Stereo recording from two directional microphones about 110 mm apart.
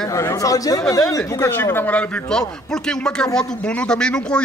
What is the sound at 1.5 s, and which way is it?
A man's voice, 20° left (ahead or behind).